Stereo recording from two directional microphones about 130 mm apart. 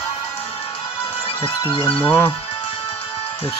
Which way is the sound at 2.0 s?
15° left (ahead or behind).